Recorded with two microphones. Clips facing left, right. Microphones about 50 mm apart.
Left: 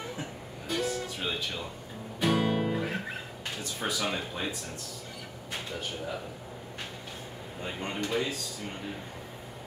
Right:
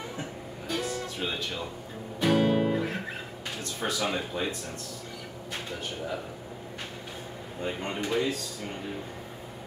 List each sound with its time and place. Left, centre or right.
0.7 s music: centre
3.8 s speech: centre
7.6 s speech: centre